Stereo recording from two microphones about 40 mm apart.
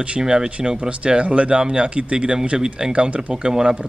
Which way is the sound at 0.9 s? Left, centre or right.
Right.